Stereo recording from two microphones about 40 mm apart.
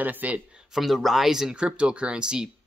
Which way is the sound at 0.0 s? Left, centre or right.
Right.